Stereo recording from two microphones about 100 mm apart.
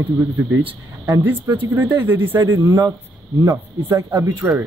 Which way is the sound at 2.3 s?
35° right (ahead or behind).